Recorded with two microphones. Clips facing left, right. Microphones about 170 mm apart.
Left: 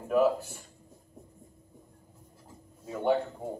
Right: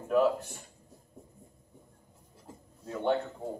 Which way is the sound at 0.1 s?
5° left (ahead or behind).